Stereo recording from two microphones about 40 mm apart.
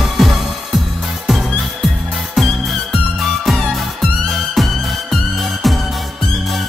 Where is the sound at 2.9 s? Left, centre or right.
Centre.